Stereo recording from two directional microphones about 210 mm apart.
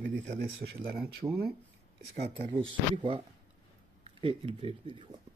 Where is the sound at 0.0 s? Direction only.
40° right (ahead or behind).